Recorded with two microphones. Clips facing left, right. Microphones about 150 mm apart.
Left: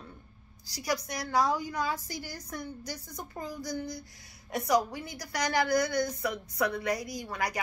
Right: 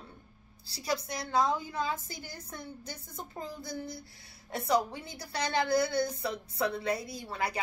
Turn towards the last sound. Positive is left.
turn(degrees=-25)  # may be behind; listen again after turning